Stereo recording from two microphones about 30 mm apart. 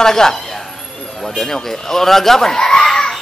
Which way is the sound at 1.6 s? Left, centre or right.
Centre.